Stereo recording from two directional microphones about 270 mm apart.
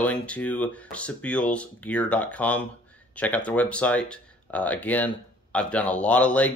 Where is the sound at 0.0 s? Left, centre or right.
Centre.